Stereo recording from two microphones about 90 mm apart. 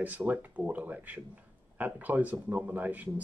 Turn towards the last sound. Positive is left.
turn(degrees=-20)  # may be behind; listen again after turning